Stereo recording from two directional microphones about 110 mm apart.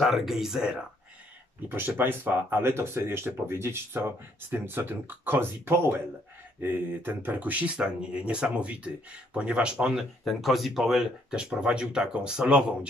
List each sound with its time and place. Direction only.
0.0 s speech: 5° right (ahead or behind)
1.7 s speech: 15° right (ahead or behind)